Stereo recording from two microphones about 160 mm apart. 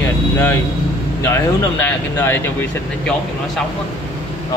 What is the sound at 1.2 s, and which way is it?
Speech, 15° left (ahead or behind).